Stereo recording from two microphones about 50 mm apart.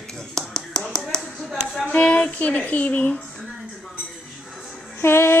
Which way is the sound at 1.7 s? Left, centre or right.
Centre.